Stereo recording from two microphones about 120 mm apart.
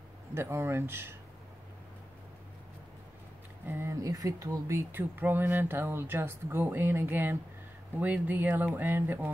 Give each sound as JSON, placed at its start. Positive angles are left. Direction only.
{"t": 0.3, "sound": "speech", "side_deg": -20}
{"t": 3.6, "sound": "speech", "side_deg": -20}